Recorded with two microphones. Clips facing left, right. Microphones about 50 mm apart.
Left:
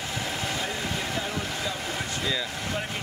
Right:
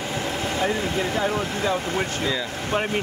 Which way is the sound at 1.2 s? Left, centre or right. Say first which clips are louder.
Right 7 dB; right.